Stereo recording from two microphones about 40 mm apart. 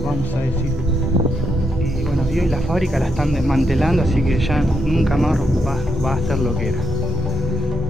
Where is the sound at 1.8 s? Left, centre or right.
Centre.